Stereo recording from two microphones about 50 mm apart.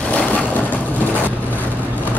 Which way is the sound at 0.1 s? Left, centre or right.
Left.